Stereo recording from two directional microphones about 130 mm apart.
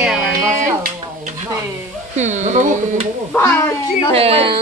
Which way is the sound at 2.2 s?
65° right (ahead or behind).